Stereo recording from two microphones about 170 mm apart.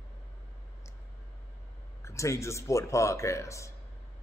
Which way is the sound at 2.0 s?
15° left (ahead or behind).